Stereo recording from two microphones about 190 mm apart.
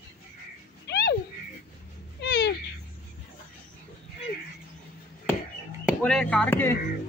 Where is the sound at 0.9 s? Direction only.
60° left (ahead or behind).